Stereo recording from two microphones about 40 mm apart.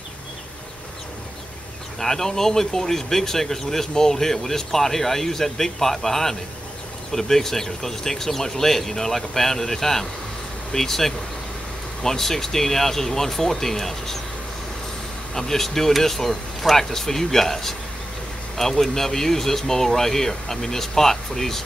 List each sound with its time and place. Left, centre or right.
2.0 s speech: centre
15.3 s speech: centre